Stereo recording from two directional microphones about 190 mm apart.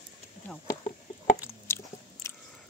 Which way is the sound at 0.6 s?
35° left (ahead or behind).